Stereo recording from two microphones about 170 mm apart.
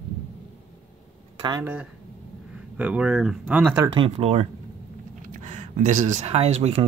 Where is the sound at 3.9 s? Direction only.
35° right (ahead or behind).